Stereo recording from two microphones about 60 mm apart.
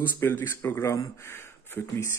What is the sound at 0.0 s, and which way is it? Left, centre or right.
Speech, left.